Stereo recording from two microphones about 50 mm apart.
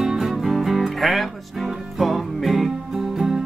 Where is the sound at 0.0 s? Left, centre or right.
Centre.